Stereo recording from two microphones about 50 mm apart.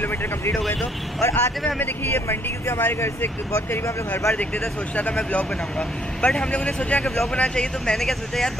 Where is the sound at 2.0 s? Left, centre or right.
Left.